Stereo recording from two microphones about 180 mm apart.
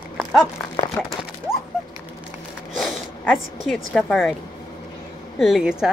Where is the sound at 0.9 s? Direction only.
Centre (ahead or behind).